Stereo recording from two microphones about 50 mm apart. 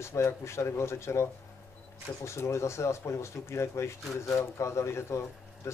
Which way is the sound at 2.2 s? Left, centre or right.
Left.